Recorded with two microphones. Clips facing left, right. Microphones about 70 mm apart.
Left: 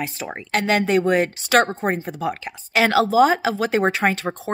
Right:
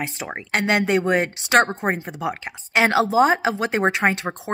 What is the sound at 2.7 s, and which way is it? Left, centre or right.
A woman's voice, right.